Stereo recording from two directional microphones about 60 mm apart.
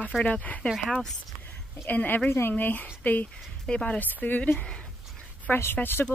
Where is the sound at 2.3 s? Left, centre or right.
Left.